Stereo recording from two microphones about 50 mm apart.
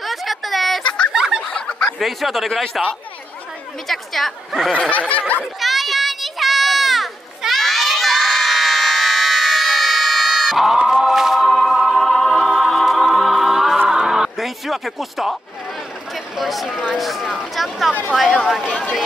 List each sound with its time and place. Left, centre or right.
0.0 s a sound: centre
0.8 s fowl: centre
1.1 s a sound: centre
1.4 s a sound: centre
1.9 s speech: centre
4.7 s snicker: left
5.6 s children playing: centre
12.5 s a capella: centre
13.8 s a sound: centre
14.4 s speech: centre
16.3 s speech: centre
18.7 s snicker: left